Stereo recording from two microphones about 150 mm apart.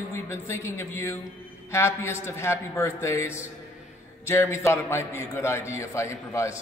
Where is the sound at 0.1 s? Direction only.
15° left (ahead or behind).